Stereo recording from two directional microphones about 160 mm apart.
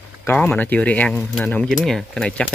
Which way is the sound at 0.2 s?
10° left (ahead or behind).